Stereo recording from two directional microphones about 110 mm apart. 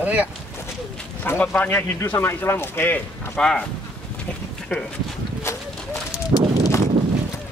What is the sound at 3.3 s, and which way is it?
Speech, 5° left (ahead or behind).